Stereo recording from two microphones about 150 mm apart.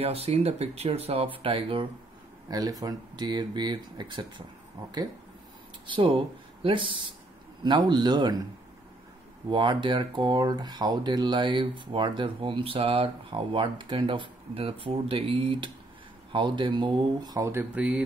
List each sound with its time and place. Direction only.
0.0 s speech: 40° right (ahead or behind)
2.4 s speech: 25° right (ahead or behind)
5.9 s speech: 35° right (ahead or behind)
9.5 s speech: 30° right (ahead or behind); by 18.0 s 10° right (ahead or behind)